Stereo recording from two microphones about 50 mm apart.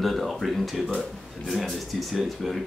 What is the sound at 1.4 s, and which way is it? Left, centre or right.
Speech, centre.